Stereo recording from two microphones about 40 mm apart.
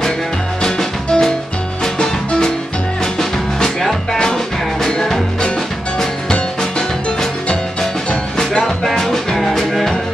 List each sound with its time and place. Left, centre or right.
0.6 s music: centre
8.6 s music: centre